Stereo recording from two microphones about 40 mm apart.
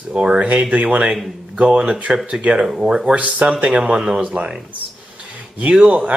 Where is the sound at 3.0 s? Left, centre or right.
Right.